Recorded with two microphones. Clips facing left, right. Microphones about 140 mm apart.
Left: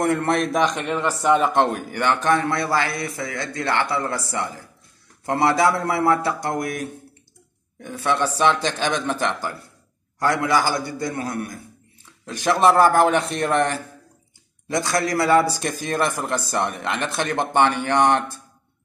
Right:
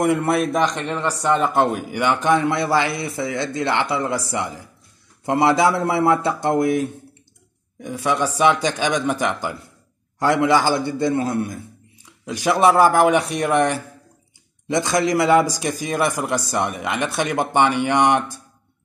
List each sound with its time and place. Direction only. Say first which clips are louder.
0.0 s a man's voice: right 2 dB; 10° right (ahead or behind)
7.8 s a man's voice: right 1 dB; 10° right (ahead or behind)
12.3 s a man's voice: right 1 dB; 10° right (ahead or behind)